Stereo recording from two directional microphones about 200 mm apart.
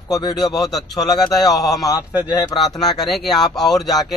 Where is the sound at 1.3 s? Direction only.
Centre (ahead or behind).